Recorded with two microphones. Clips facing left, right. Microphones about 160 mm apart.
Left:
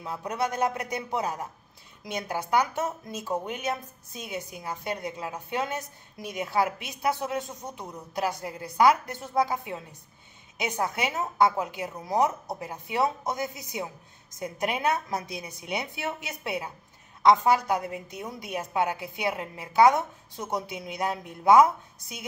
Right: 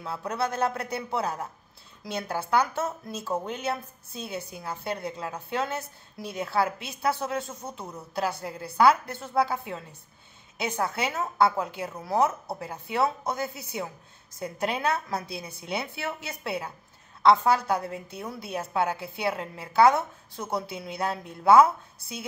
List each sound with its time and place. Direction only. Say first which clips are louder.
0.0 s a woman's voice: even; 15° left (ahead or behind)